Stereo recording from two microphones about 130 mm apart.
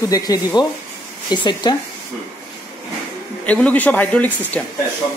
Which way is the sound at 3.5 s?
10° left (ahead or behind).